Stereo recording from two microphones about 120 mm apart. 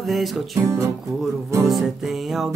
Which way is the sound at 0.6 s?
25° right (ahead or behind).